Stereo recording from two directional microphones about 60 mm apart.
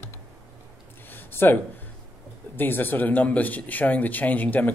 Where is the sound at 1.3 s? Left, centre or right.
Left.